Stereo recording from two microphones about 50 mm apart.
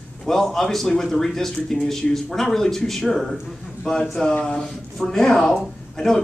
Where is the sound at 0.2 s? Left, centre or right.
Centre.